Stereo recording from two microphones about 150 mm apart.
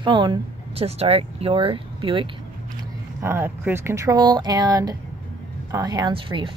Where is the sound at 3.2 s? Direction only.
15° right (ahead or behind).